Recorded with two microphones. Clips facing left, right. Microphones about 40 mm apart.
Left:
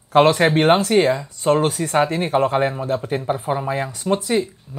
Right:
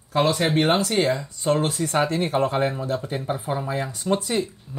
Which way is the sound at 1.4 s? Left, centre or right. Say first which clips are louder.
Left 5 dB; left.